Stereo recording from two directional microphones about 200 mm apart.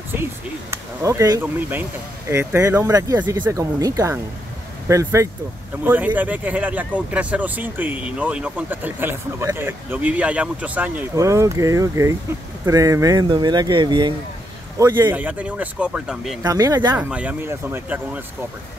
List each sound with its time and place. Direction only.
0.1 s speech: 10° right (ahead or behind)
16.4 s speech: 15° right (ahead or behind)
17.1 s speech: 5° right (ahead or behind)